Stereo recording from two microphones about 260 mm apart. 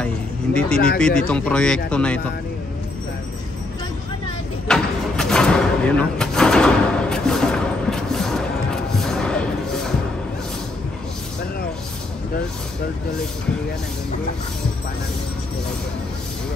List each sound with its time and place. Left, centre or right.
0.0 s speech: centre
4.6 s door: centre
9.0 s a sound: centre